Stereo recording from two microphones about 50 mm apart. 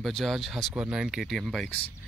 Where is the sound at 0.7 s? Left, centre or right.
Centre.